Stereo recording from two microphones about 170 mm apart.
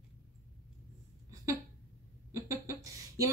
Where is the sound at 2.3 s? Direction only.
15° right (ahead or behind).